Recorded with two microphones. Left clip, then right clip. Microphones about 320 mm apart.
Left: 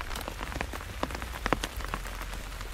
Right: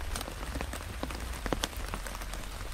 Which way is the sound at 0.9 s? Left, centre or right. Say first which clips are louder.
Left 8 dB; centre.